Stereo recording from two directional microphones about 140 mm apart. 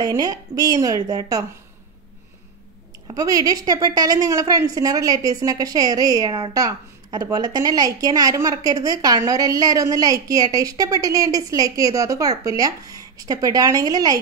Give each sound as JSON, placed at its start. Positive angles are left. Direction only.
{"t": 0.0, "sound": "a woman's voice", "side_deg": -25}
{"t": 3.1, "sound": "a woman's voice", "side_deg": -25}